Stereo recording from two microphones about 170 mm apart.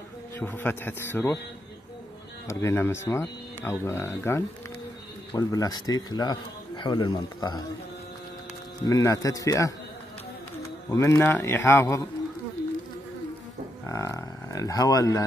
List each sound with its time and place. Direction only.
0.4 s speech: 10° left (ahead or behind)
2.4 s speech: 15° left (ahead or behind)
8.8 s speech: 20° left (ahead or behind)
10.9 s speech: 15° left (ahead or behind)
13.8 s speech: 20° left (ahead or behind)